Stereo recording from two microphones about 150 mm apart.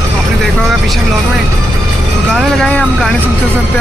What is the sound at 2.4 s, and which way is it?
Speech, 5° left (ahead or behind).